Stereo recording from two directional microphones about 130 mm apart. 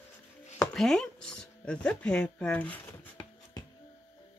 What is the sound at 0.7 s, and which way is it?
Speech, 5° left (ahead or behind).